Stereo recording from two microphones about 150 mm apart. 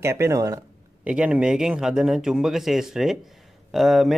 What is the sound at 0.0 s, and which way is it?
Speech, 20° right (ahead or behind).